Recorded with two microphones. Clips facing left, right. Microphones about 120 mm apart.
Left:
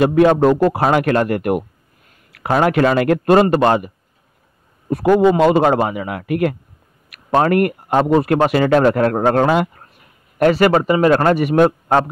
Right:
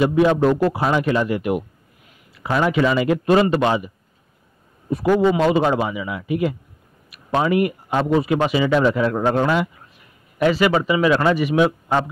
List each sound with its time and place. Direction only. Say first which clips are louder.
0.0 s speech: left 4 dB; 60° left (ahead or behind)
2.6 s speech: left 3 dB; 60° left (ahead or behind)